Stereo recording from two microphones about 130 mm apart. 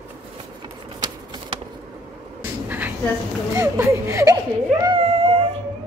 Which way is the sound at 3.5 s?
25° right (ahead or behind).